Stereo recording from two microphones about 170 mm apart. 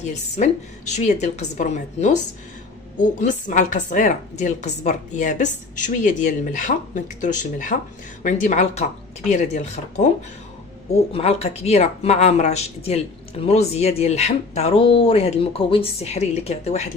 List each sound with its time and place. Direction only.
0.0 s speech: 45° left (ahead or behind)
11.1 s a woman's voice: 35° left (ahead or behind)